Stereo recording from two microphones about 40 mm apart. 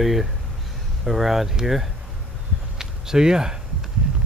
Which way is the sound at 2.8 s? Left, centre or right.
Centre.